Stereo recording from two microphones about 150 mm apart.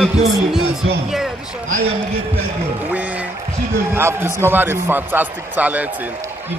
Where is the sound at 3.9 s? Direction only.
15° right (ahead or behind).